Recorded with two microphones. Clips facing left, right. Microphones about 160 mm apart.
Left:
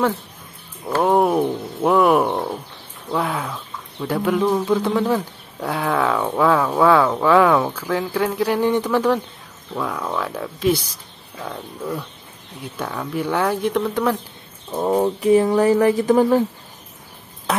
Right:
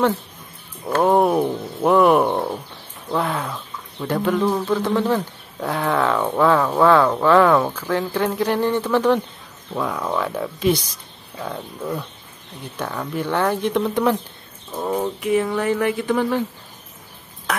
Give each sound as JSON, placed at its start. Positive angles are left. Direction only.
{"t": 0.9, "sound": "speech", "side_deg": 0}
{"t": 9.8, "sound": "speech", "side_deg": 0}
{"t": 10.7, "sound": "a sound", "side_deg": 5}
{"t": 11.4, "sound": "speech", "side_deg": -5}
{"t": 14.8, "sound": "speech", "side_deg": 35}
{"t": 17.5, "sound": "a sound", "side_deg": 25}